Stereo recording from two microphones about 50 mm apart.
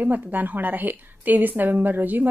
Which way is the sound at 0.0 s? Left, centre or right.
Right.